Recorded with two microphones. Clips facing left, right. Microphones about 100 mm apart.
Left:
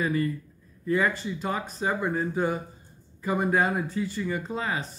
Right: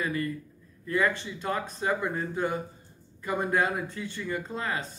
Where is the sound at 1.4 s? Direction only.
5° left (ahead or behind).